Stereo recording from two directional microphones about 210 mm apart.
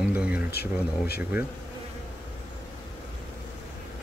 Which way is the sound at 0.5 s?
50° left (ahead or behind).